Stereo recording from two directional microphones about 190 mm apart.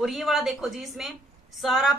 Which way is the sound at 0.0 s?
Centre (ahead or behind).